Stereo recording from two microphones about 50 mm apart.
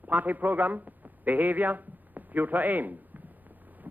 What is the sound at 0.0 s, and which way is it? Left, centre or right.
A man's voice, right.